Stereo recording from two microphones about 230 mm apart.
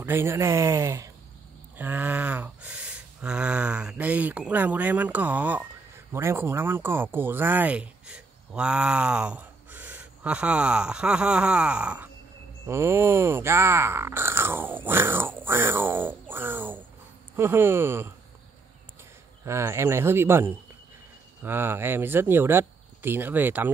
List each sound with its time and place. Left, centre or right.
0.0 s speech: centre
19.4 s speech: centre